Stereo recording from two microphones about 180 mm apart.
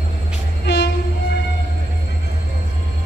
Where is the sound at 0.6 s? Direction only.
75° left (ahead or behind).